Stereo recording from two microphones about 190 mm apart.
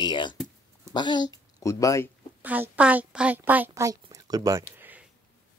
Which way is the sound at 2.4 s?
10° right (ahead or behind).